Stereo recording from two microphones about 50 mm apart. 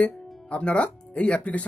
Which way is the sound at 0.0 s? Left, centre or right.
Left.